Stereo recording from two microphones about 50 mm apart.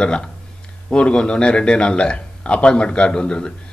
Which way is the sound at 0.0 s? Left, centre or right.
Centre.